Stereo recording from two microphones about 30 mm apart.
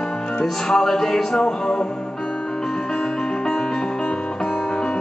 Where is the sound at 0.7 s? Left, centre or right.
Left.